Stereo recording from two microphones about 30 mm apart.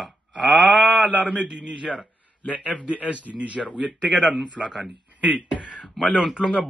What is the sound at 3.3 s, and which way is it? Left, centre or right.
Speech, right.